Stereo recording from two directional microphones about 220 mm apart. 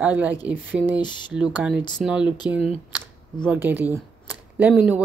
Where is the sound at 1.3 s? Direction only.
5° right (ahead or behind).